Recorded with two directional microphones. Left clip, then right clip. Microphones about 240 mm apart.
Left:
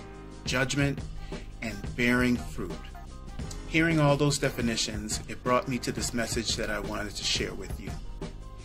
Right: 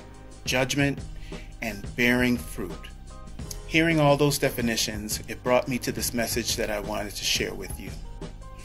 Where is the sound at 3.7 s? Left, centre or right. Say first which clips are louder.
Right 4 dB; centre.